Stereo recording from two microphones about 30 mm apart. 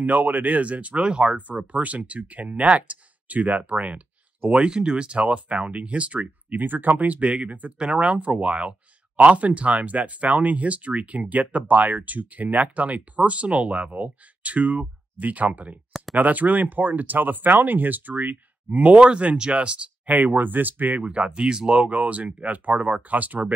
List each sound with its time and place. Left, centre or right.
0.0 s speech: right
0.9 s speech: right
1.7 s speech: right
4.6 s speech: right
5.2 s speech: right
6.1 s speech: right
7.2 s speech: right
18.9 s speech: right
20.1 s speech: right
21.0 s speech: right
21.8 s speech: right